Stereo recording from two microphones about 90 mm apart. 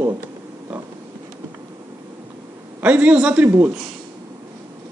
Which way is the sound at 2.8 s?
15° right (ahead or behind).